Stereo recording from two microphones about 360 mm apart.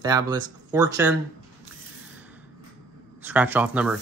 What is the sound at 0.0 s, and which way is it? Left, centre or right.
Speech, centre.